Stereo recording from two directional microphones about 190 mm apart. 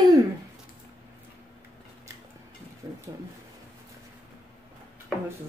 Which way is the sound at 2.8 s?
20° right (ahead or behind).